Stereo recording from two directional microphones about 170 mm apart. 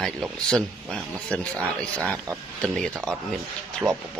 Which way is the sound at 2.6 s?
5° left (ahead or behind).